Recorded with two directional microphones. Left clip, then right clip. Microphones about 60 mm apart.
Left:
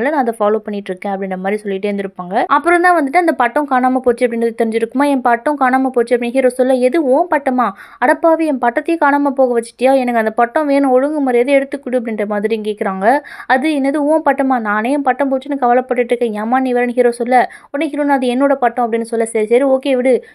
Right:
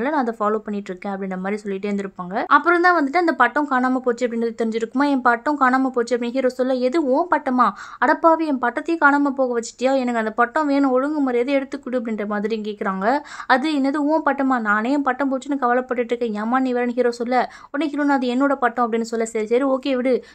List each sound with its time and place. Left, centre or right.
0.0 s speech: left
8.6 s speech: left
10.0 s speech: left
13.8 s speech: left
18.1 s speech: left
18.8 s speech: centre
19.1 s speech: left
19.6 s speech: left